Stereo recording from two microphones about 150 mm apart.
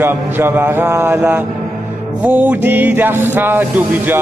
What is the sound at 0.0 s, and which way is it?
Music, 15° right (ahead or behind).